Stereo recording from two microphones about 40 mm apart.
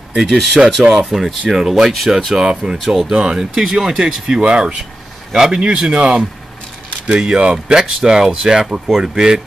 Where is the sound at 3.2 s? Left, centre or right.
Centre.